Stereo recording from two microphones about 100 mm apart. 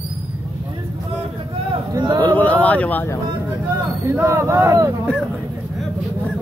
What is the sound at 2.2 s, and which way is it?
Speech, 15° left (ahead or behind).